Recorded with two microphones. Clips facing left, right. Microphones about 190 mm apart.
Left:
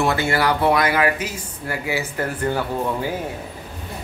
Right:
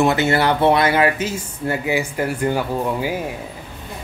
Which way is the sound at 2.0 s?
15° right (ahead or behind).